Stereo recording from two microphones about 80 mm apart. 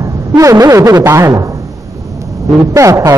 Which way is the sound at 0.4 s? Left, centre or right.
Right.